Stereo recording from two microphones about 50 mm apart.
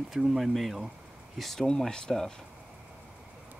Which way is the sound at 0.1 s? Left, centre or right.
Centre.